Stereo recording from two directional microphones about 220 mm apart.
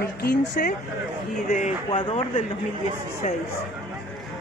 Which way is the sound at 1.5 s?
35° left (ahead or behind).